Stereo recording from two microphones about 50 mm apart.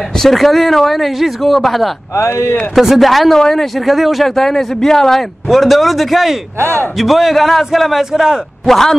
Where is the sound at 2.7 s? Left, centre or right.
Centre.